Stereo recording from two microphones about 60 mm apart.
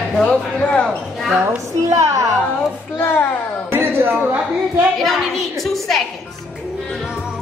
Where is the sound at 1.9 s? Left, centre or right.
Right.